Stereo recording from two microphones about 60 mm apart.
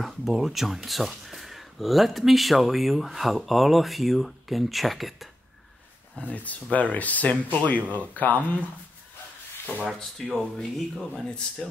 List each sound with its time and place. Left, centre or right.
0.0 s speech: centre
6.3 s speech: left
10.3 s speech: centre
11.2 s speech: centre